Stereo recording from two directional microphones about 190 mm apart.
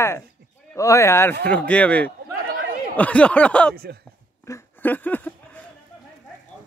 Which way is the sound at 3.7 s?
55° right (ahead or behind).